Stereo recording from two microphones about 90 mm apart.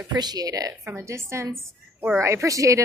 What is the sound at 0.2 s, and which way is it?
A woman's voice, 45° right (ahead or behind).